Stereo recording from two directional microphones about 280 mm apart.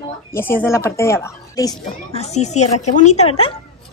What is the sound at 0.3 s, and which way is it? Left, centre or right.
Speech, centre.